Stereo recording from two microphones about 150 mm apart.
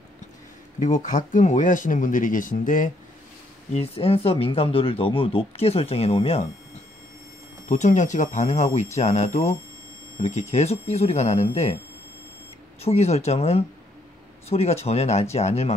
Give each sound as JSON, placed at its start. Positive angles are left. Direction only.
{"t": 0.7, "sound": "speech", "side_deg": 55}
{"t": 3.7, "sound": "speech", "side_deg": 40}
{"t": 10.5, "sound": "speech", "side_deg": 45}
{"t": 12.8, "sound": "speech", "side_deg": 45}